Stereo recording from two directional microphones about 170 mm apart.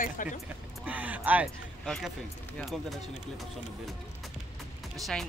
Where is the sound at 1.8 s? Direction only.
5° left (ahead or behind).